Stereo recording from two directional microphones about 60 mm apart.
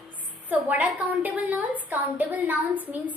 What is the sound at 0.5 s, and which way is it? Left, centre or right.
A woman's voice, right.